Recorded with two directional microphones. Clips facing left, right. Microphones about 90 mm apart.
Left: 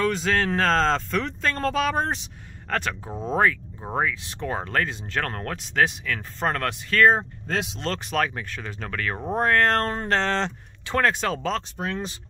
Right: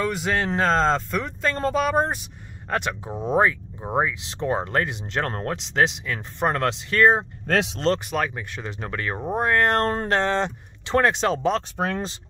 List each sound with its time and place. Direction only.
0.0 s speech: 10° right (ahead or behind)
7.4 s speech: 65° right (ahead or behind)
8.0 s speech: 5° right (ahead or behind)
8.5 s speech: 20° right (ahead or behind)
9.2 s speech: 5° right (ahead or behind)
10.9 s speech: 20° right (ahead or behind)